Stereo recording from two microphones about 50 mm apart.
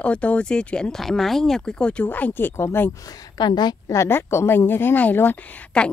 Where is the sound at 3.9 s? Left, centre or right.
Left.